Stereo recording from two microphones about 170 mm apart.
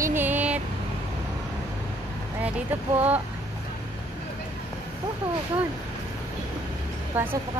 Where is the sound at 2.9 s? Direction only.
10° right (ahead or behind).